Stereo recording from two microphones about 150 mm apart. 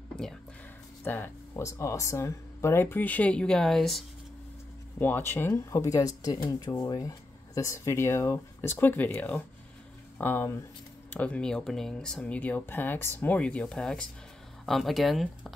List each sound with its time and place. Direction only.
1.0 s speech: 15° left (ahead or behind)
4.9 s speech: 15° left (ahead or behind)